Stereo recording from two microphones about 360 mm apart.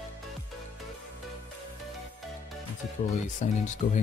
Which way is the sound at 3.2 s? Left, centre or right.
Left.